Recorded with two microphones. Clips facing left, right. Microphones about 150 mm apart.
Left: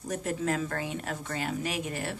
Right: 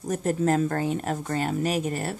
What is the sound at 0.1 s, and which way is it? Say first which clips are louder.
Speech: right 7 dB; 45° right (ahead or behind).